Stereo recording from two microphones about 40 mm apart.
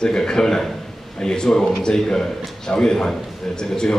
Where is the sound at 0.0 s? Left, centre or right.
Centre.